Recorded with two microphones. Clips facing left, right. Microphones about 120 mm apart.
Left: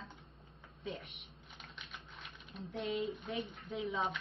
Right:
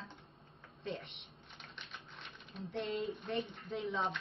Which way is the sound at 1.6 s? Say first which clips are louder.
Even; centre (ahead or behind).